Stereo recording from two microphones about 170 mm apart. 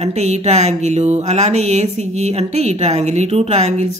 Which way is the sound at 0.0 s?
40° right (ahead or behind).